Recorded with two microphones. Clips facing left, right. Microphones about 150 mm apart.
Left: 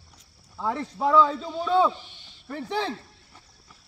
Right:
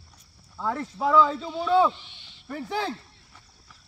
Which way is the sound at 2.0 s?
45° left (ahead or behind).